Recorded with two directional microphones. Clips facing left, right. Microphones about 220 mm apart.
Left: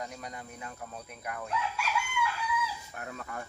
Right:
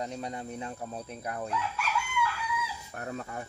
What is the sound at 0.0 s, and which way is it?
Speech, 30° right (ahead or behind).